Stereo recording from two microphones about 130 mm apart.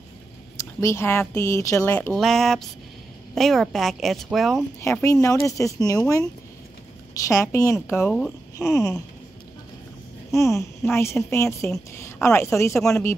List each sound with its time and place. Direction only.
0.6 s speech: 25° left (ahead or behind)
2.1 s speech: centre (ahead or behind)
4.8 s speech: 25° left (ahead or behind)
10.3 s speech: 20° left (ahead or behind)